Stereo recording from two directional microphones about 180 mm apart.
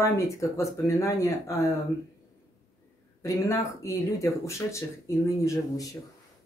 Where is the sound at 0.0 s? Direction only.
15° left (ahead or behind).